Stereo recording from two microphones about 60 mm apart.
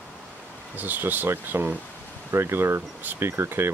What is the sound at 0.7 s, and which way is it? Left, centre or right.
Speech, right.